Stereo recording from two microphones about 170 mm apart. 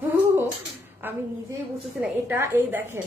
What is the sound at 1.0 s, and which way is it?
A woman's voice, 10° right (ahead or behind).